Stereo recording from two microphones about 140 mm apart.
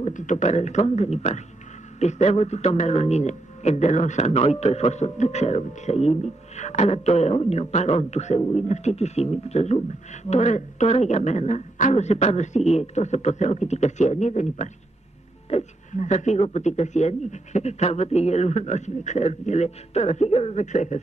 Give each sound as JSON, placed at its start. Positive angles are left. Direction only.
{"t": 0.0, "sound": "a man's voice", "side_deg": 60}